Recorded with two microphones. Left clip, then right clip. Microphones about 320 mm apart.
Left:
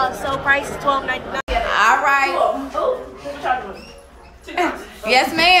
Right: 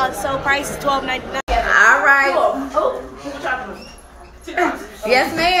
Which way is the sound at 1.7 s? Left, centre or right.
Centre.